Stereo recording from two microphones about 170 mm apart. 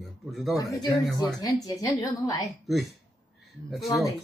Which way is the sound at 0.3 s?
Centre (ahead or behind).